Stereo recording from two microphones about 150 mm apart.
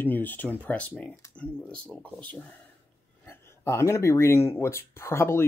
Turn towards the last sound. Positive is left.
turn(degrees=15)  # may be behind; listen again after turning